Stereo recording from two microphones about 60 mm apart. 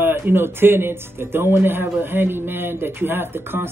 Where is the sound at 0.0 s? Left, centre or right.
Right.